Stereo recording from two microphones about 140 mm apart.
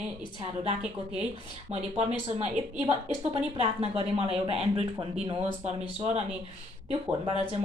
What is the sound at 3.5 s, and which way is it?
Speech, 45° right (ahead or behind).